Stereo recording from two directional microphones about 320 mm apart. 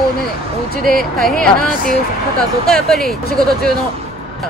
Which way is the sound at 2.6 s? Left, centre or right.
Centre.